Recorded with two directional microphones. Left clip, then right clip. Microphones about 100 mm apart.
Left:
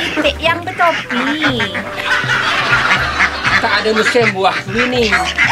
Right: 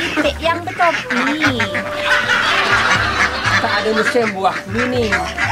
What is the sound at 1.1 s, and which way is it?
Speech, 85° right.